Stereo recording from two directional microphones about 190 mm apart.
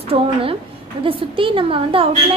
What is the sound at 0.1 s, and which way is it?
A woman's voice, 30° right (ahead or behind).